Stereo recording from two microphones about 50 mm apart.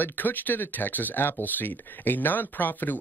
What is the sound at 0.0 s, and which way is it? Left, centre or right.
Speech, left.